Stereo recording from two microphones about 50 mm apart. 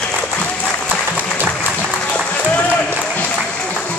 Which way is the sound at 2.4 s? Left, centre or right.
Left.